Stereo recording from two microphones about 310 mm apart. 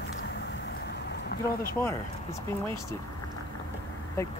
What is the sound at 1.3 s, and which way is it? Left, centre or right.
Vehicle, left.